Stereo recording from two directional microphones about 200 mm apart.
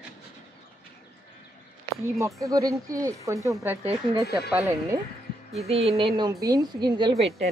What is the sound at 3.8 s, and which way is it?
Speech, 30° right (ahead or behind).